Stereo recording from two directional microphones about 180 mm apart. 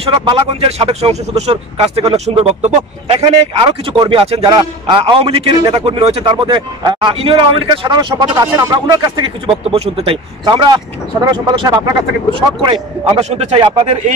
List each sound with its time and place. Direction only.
0.0 s speech: 30° right (ahead or behind)
3.5 s speech: 30° right (ahead or behind)
9.7 s speech: 35° right (ahead or behind)